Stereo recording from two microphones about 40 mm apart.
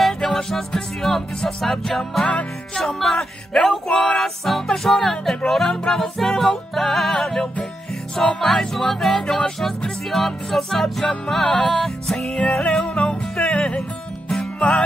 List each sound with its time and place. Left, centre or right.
0.0 s music: centre
12.3 s music: left